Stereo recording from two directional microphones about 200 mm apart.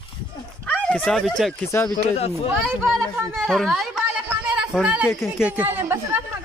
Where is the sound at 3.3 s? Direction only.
5° left (ahead or behind).